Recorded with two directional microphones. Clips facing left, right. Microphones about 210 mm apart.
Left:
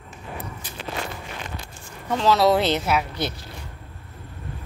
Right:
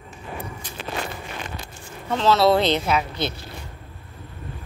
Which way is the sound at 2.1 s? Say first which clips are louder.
Right 1 dB; 10° left (ahead or behind).